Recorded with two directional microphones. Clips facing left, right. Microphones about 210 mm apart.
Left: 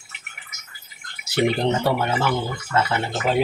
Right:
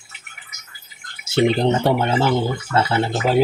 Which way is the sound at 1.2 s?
25° right (ahead or behind).